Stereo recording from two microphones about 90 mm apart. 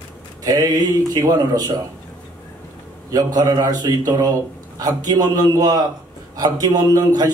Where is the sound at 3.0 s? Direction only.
45° right (ahead or behind).